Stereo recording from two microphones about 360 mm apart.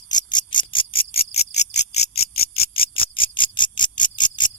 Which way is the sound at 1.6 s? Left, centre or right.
Left.